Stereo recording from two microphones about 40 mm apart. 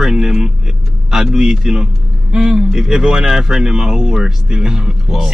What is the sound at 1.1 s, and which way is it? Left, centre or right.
Speech, centre.